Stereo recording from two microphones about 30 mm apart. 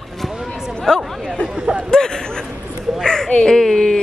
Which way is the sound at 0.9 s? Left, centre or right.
Left.